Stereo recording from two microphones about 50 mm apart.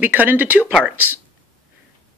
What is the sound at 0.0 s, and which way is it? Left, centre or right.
Speech, right.